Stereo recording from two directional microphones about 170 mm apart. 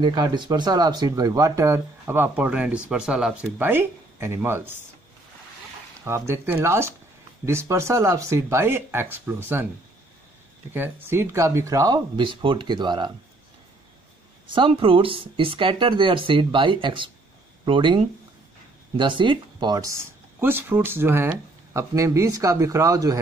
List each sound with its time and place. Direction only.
0.0 s speech: 25° right (ahead or behind)
6.0 s speech: 15° right (ahead or behind)
10.7 s speech: 10° right (ahead or behind)
14.5 s speech: 30° right (ahead or behind)